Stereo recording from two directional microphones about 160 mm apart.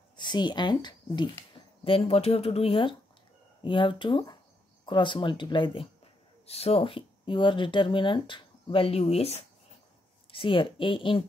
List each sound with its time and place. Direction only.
0.2 s speech: 30° left (ahead or behind)